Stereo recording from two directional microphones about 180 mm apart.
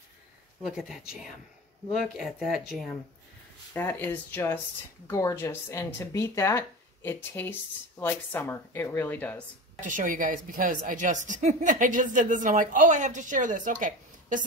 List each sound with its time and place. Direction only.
0.7 s speech: centre (ahead or behind)
3.7 s speech: 10° left (ahead or behind)
9.8 s a woman's voice: 45° right (ahead or behind)